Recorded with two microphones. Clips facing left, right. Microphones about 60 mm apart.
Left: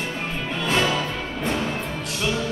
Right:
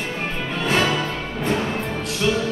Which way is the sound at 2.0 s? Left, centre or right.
Centre.